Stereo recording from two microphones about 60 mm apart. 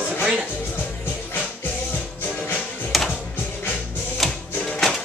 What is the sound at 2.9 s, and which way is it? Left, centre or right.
Music, centre.